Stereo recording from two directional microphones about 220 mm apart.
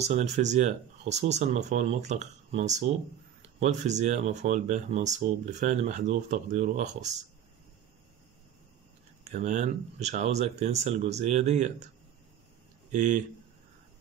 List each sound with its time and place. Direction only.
0.0 s speech: 30° right (ahead or behind)
9.3 s speech: 30° right (ahead or behind)
12.9 s speech: 35° right (ahead or behind)